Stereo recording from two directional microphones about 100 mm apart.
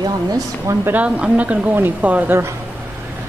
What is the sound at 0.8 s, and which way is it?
Speech, 15° right (ahead or behind).